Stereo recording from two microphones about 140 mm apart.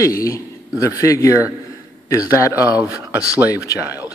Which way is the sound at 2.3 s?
25° left (ahead or behind).